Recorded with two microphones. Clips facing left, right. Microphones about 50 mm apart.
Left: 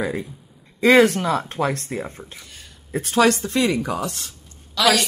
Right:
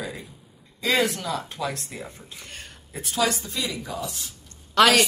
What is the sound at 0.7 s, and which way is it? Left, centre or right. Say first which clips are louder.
Speech: left 9 dB; left.